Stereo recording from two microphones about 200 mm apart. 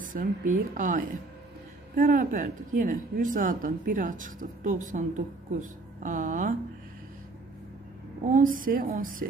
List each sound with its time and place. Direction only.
0.0 s speech: 40° right (ahead or behind)
8.3 s a woman's voice: 40° right (ahead or behind)